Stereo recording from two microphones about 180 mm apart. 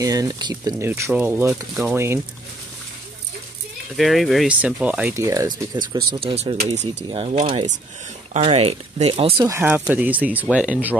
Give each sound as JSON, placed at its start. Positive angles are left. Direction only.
{"t": 0.0, "sound": "speech", "side_deg": -20}
{"t": 3.9, "sound": "speech", "side_deg": 0}
{"t": 9.4, "sound": "speech", "side_deg": -15}